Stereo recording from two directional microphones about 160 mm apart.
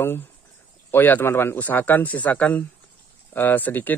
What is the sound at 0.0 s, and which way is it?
Speech, 15° left (ahead or behind).